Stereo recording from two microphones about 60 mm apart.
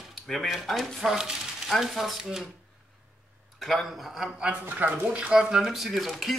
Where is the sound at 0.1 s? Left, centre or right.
Centre.